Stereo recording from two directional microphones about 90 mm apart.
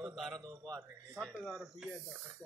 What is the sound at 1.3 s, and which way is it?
Speech, 5° right (ahead or behind).